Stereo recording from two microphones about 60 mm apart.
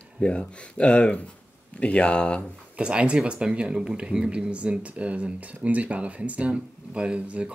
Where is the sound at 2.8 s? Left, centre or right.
Centre.